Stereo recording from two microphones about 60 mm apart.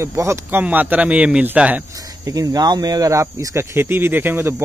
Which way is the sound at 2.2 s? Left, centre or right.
Right.